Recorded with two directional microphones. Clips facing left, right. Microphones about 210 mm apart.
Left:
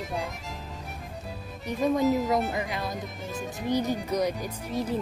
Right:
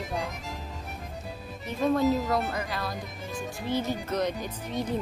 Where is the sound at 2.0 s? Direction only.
Centre (ahead or behind).